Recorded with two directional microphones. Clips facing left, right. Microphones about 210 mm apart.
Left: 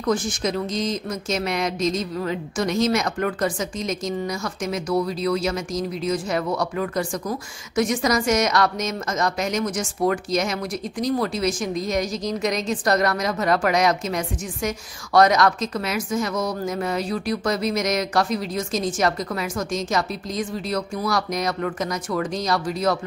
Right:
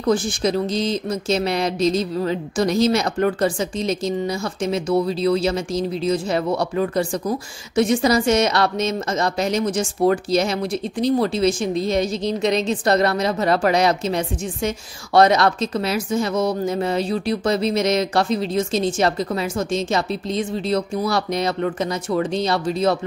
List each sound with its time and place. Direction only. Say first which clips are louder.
0.0 s speech: right 4 dB; 30° right (ahead or behind)